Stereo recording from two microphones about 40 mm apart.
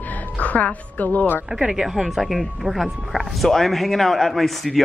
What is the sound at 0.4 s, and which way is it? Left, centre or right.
A woman's voice, left.